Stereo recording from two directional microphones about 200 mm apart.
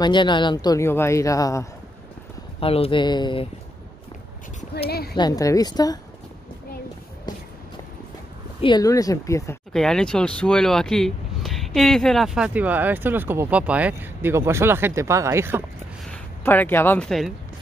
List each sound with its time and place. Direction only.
0.0 s speech: 25° left (ahead or behind)
2.6 s speech: 30° left (ahead or behind)
4.8 s speech: 50° left (ahead or behind)
5.1 s speech: 20° left (ahead or behind)
8.5 s speech: 25° left (ahead or behind)
9.7 s speech: 5° left (ahead or behind)
16.1 s speech: 10° left (ahead or behind)